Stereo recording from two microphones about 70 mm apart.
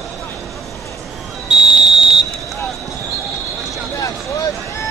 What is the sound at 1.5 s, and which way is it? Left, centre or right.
Fire alarm, centre.